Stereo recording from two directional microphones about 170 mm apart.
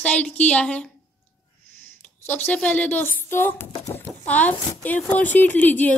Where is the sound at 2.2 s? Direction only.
10° left (ahead or behind).